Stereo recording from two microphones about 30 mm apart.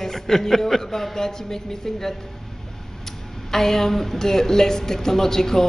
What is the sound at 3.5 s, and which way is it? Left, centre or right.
A woman's voice, centre.